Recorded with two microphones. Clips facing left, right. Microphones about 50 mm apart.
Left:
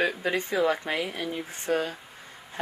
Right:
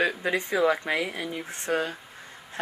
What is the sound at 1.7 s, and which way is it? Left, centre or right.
Speech, right.